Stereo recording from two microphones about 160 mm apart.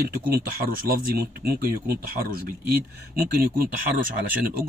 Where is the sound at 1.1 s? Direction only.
75° right (ahead or behind).